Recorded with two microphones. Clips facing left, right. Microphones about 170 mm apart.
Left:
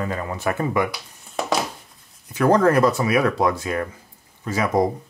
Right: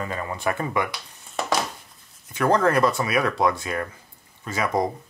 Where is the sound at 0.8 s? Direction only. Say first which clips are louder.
Left 4 dB; centre (ahead or behind).